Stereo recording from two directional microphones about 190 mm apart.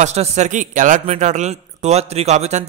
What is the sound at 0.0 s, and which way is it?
Speech, 35° right (ahead or behind).